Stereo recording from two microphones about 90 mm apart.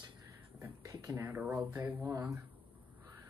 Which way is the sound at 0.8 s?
40° right (ahead or behind).